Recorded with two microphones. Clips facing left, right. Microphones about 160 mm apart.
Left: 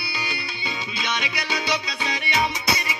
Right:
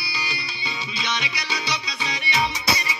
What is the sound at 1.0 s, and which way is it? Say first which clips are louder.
Music: left 1 dB; 50° left (ahead or behind).